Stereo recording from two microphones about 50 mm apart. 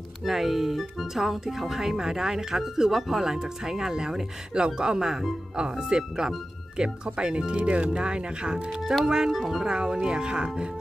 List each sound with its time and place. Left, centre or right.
0.2 s speech: centre